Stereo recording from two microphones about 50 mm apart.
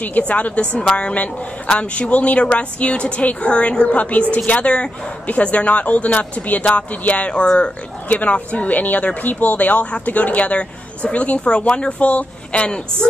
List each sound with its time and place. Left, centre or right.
0.3 s speech: left